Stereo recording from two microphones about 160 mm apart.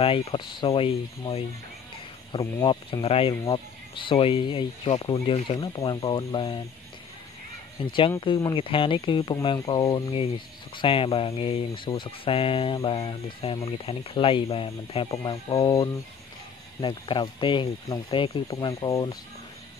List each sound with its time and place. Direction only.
0.0 s speech: 35° left (ahead or behind)
5.6 s speech: 25° left (ahead or behind)
7.8 s speech: 30° left (ahead or behind)